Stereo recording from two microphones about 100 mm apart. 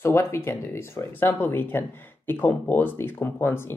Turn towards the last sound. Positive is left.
turn(degrees=20)  # may be behind; listen again after turning